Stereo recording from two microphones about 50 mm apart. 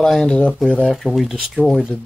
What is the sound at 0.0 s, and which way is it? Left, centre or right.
Speech, centre.